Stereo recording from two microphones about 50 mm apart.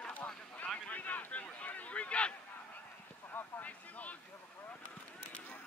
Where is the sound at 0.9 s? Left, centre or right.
Left.